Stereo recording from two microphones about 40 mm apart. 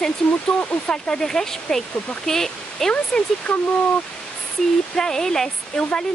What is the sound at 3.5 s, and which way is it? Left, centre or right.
Speech, left.